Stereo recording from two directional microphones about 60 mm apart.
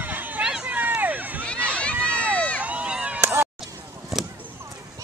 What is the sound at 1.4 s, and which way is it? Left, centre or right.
Run, left.